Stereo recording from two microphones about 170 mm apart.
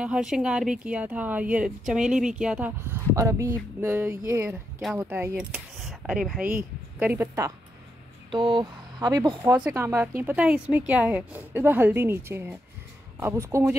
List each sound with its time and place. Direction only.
0.0 s speech: 5° right (ahead or behind)
5.8 s a sound: centre (ahead or behind)
7.0 s speech: 10° right (ahead or behind)
8.3 s speech: 30° right (ahead or behind)